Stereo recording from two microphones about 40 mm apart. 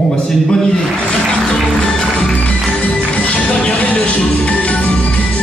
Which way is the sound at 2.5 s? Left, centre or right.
Left.